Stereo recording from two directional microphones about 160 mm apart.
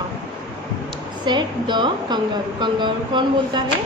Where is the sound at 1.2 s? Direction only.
30° right (ahead or behind).